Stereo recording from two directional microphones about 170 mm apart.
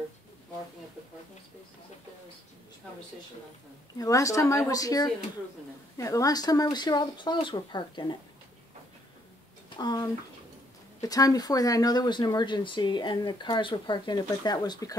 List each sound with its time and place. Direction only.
4.0 s speech: 20° left (ahead or behind)
9.8 s speech: 25° left (ahead or behind)